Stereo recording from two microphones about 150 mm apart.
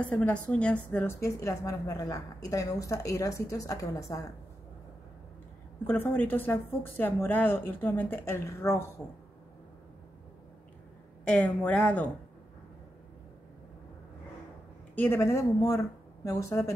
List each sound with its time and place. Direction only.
0.0 s speech: 5° left (ahead or behind)
1.2 s a woman's voice: 20° left (ahead or behind)
5.9 s speech: 15° left (ahead or behind)
11.2 s speech: 10° left (ahead or behind)
15.0 s a woman's voice: 15° left (ahead or behind)